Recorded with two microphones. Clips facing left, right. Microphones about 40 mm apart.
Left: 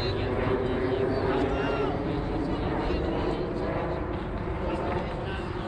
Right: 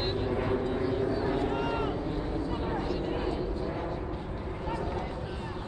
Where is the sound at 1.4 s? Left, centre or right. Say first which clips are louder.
Left 3 dB; left.